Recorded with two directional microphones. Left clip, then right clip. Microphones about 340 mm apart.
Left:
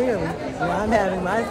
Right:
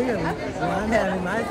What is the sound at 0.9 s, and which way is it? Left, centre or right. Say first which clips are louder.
Speech: left 3 dB; centre.